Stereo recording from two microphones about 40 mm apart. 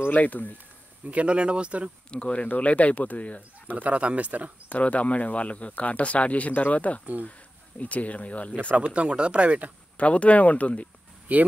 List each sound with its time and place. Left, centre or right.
0.1 s speech: left
1.0 s speech: right
2.0 s speech: left
3.7 s speech: right
4.6 s speech: left
8.7 s speech: right
9.9 s speech: left
11.3 s speech: right